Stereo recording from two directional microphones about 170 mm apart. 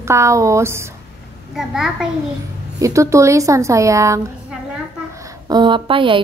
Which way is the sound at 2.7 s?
20° right (ahead or behind).